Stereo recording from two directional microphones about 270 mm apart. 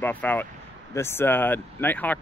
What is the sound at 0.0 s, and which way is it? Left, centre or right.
Speech, centre.